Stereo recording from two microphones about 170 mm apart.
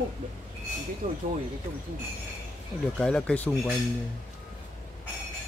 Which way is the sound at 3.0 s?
5° left (ahead or behind).